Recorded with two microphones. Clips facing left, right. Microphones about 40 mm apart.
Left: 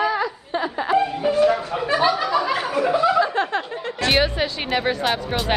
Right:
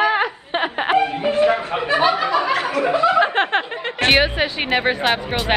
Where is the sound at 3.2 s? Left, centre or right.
Right.